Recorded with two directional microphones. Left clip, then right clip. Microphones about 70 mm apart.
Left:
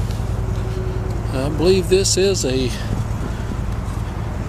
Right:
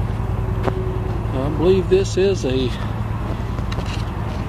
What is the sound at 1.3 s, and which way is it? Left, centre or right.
Vehicle, left.